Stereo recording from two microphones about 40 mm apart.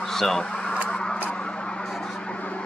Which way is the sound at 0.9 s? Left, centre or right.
Left.